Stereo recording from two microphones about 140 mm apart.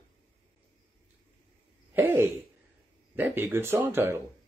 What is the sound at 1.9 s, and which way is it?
Speech, 15° right (ahead or behind).